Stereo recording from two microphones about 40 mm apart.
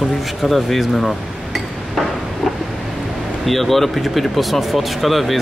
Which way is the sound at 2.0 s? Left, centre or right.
Centre.